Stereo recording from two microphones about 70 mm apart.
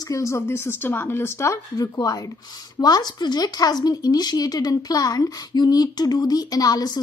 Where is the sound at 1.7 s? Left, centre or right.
Left.